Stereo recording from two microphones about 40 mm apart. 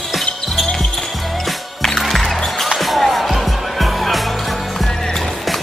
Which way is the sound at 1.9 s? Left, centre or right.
Centre.